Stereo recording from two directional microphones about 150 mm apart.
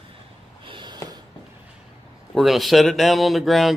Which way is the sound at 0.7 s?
30° right (ahead or behind).